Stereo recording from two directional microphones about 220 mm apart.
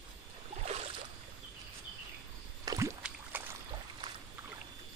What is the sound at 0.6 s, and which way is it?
Boat, 30° right (ahead or behind).